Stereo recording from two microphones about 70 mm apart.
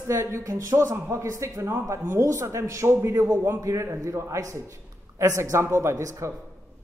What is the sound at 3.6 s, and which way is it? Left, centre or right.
A man's voice, right.